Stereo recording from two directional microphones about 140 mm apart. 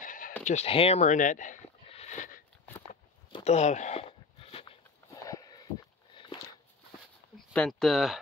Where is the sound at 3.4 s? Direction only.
55° left (ahead or behind).